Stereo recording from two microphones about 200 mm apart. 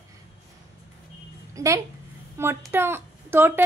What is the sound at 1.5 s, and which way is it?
A child's voice, 15° right (ahead or behind).